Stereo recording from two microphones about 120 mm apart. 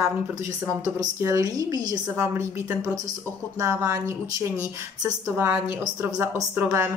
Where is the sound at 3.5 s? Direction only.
25° right (ahead or behind).